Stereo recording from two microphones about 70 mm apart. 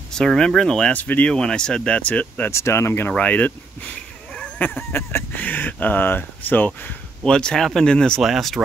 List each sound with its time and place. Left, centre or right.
0.1 s speech: centre
0.9 s speech: left
1.3 s speech: centre
2.5 s speech: left
3.1 s speech: centre
7.2 s speech: centre
8.2 s speech: centre